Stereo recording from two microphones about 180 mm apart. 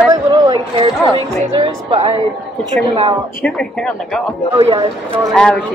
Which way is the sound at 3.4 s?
5° left (ahead or behind).